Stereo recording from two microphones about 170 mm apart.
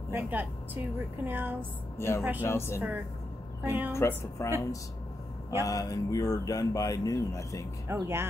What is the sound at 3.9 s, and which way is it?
Speech, 15° left (ahead or behind).